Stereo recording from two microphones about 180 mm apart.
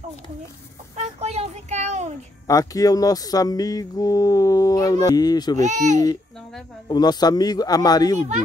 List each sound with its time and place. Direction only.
0.9 s a sound: 35° right (ahead or behind)
2.4 s speech: 20° left (ahead or behind)
5.6 s speech: 40° right (ahead or behind)
6.9 s speech: 20° left (ahead or behind)